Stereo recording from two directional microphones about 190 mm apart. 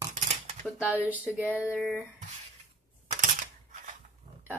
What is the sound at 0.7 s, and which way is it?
Speech, 5° right (ahead or behind).